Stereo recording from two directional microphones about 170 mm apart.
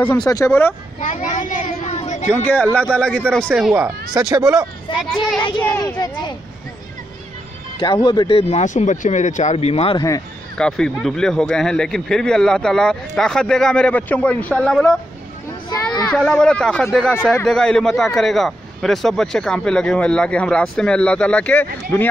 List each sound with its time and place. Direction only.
0.0 s speech: 10° left (ahead or behind)
1.0 s a child's voice: 45° left (ahead or behind)
2.2 s speech: 10° left (ahead or behind)
3.4 s speech: 10° right (ahead or behind)
4.3 s speech: 20° right (ahead or behind)
4.9 s speech: 5° right (ahead or behind)
5.6 s speech: 15° left (ahead or behind)
7.8 s speech: 25° left (ahead or behind)
10.6 s speech: 5° left (ahead or behind)
15.7 s children playing: 20° left (ahead or behind)
16.1 s speech: 5° left (ahead or behind)